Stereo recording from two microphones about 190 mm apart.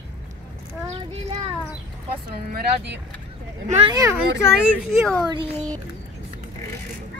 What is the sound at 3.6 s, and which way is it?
Speech, 30° right (ahead or behind).